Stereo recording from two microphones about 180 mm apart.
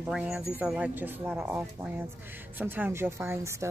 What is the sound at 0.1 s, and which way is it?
Speech, 5° right (ahead or behind).